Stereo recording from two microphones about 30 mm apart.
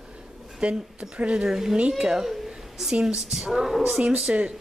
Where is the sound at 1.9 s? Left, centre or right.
Centre.